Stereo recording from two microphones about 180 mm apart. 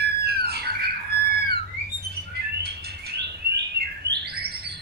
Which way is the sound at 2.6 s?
65° right (ahead or behind).